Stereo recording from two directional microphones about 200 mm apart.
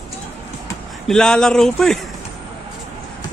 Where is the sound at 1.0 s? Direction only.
5° left (ahead or behind).